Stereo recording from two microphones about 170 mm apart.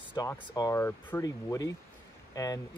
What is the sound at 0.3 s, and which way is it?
Speech, 15° left (ahead or behind).